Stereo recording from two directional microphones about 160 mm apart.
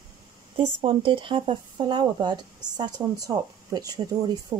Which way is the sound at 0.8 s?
35° right (ahead or behind).